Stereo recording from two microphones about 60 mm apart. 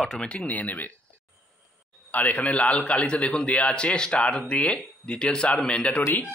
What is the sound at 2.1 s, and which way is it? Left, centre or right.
A man's voice, left.